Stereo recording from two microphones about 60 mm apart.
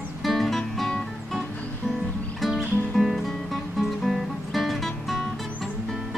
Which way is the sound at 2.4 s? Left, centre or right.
Centre.